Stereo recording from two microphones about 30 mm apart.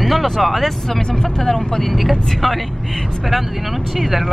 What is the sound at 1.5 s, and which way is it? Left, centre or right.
Speech, centre.